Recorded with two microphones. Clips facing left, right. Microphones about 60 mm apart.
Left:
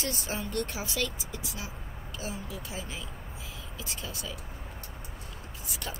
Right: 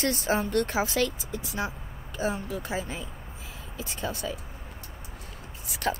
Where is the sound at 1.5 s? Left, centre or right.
Right.